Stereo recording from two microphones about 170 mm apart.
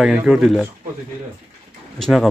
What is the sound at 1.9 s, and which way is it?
Speech, centre (ahead or behind).